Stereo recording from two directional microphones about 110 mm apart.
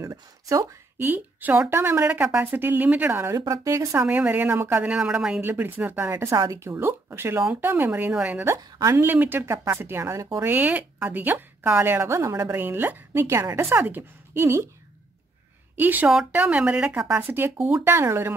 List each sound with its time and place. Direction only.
0.0 s a woman's voice: 30° right (ahead or behind)
3.3 s speech: 30° right (ahead or behind)
4.0 s a woman's voice: 15° right (ahead or behind)
5.4 s a woman's voice: 20° right (ahead or behind)
8.5 s a woman's voice: 25° right (ahead or behind)
10.5 s a woman's voice: 15° right (ahead or behind)
15.7 s a woman's voice: 15° right (ahead or behind)